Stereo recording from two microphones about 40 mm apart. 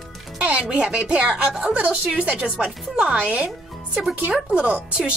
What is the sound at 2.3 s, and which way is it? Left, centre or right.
Speech, right.